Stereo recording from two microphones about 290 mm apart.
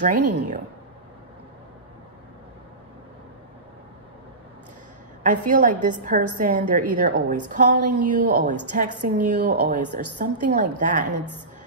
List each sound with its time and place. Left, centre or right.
0.0 s a woman's voice: right
5.5 s a woman's voice: right